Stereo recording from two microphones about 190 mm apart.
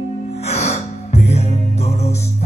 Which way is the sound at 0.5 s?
35° left (ahead or behind).